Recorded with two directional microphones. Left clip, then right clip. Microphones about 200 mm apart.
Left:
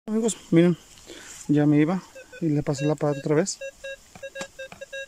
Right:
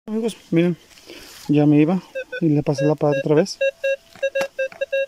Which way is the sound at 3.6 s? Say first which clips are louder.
Right 16 dB; 50° right (ahead or behind).